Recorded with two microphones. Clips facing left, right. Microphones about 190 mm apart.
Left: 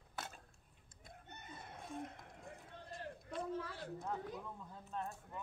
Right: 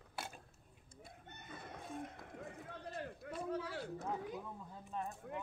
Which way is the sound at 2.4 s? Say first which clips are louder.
Right 6 dB; 65° right (ahead or behind).